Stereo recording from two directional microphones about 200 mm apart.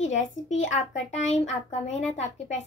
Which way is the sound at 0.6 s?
35° left (ahead or behind).